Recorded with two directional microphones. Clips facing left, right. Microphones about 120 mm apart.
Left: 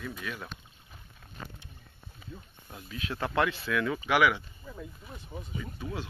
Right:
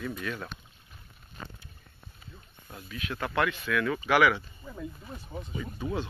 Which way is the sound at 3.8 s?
10° left (ahead or behind).